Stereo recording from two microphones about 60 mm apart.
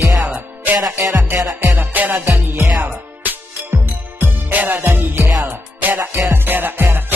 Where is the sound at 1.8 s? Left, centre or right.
Right.